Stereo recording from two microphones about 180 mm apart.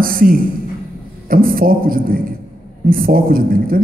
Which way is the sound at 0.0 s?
50° right (ahead or behind).